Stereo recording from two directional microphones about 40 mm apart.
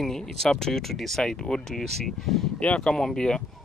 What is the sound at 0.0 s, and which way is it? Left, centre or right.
Speech, centre.